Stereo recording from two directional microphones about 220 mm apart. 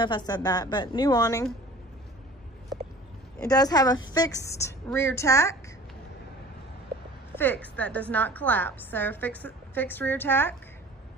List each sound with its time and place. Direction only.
0.0 s a woman's voice: 20° left (ahead or behind)
3.4 s a woman's voice: 15° left (ahead or behind)
7.3 s a woman's voice: 10° left (ahead or behind)